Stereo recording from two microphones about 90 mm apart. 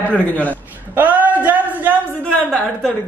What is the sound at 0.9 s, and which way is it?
Speech, 20° right (ahead or behind).